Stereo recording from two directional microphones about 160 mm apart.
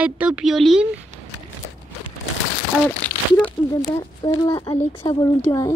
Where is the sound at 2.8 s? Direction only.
10° left (ahead or behind).